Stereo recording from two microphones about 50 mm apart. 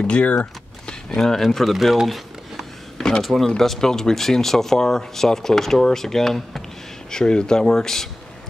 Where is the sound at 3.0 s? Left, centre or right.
Centre.